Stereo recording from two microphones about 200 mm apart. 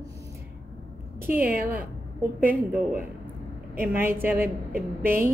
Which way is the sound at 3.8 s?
10° right (ahead or behind).